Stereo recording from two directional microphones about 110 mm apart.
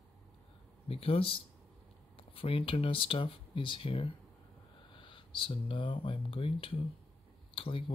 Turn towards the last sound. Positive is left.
turn(degrees=55)  # may be behind; listen again after turning